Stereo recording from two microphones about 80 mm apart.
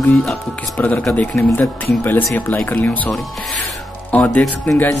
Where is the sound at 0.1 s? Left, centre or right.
Centre.